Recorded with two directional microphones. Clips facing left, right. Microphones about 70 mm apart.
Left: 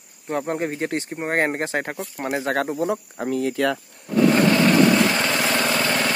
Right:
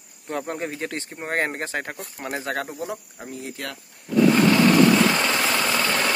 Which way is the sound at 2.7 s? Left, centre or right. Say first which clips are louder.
Left 8 dB; left.